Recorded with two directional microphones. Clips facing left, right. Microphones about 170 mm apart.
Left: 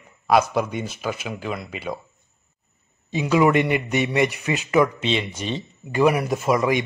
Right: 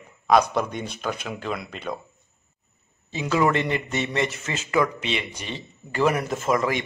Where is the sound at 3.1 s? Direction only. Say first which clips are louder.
Left 4 dB; 15° left (ahead or behind).